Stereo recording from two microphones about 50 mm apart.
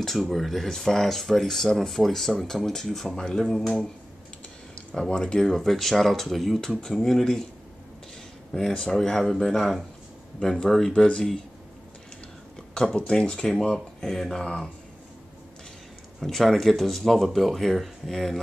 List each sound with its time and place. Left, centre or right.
0.0 s speech: centre
5.1 s speech: centre
5.5 s speech: centre
8.5 s speech: centre
10.9 s speech: left
12.7 s speech: centre
16.2 s speech: centre